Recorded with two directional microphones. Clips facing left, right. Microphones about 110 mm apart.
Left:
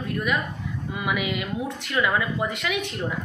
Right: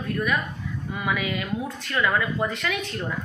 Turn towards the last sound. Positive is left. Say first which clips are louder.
# left 1 dB
turn(degrees=20)  # may be behind; listen again after turning